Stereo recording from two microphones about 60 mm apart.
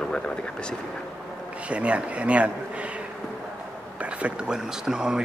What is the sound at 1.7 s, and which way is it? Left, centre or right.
Speech, right.